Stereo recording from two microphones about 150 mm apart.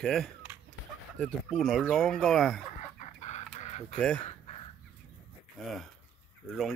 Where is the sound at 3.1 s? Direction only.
50° left (ahead or behind).